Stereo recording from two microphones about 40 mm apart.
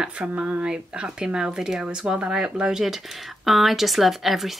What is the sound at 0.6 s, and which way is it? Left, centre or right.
Speech, right.